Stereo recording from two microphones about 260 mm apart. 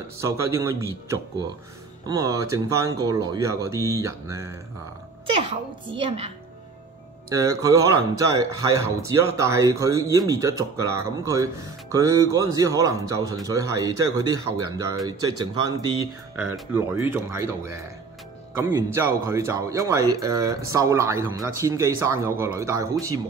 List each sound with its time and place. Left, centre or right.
0.2 s a child's voice: centre